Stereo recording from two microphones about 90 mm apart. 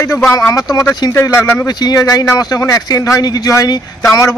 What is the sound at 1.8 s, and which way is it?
A man's voice, 45° left (ahead or behind).